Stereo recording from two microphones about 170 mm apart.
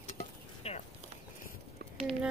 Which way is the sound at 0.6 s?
35° left (ahead or behind).